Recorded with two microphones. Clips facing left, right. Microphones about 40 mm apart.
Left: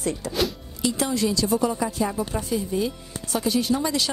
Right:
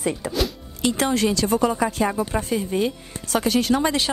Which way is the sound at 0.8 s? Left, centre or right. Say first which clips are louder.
Right 3 dB; right.